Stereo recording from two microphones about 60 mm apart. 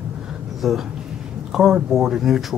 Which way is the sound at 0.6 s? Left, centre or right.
Centre.